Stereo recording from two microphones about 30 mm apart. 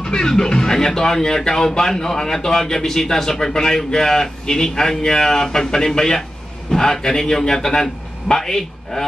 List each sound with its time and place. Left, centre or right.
0.0 s music: left
0.3 s a man's voice: left